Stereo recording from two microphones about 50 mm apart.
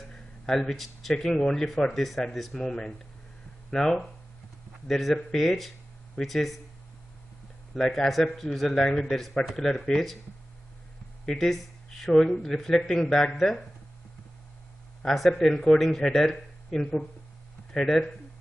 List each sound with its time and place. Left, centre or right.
0.1 s a man's voice: centre
7.7 s a man's voice: centre
11.2 s speech: centre
15.1 s a man's voice: centre
15.5 s speech: centre